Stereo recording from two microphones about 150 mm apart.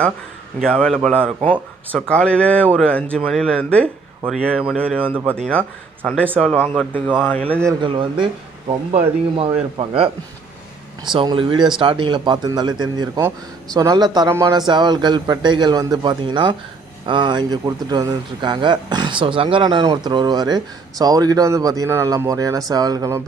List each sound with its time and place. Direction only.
0.6 s speech: 5° left (ahead or behind)
5.1 s speech: 15° right (ahead or behind)
5.4 s speech: 10° left (ahead or behind)
7.2 s speech: 10° left (ahead or behind)
7.8 s speech: 35° right (ahead or behind)
11.1 s speech: 30° right (ahead or behind)
14.7 s speech: 30° right (ahead or behind)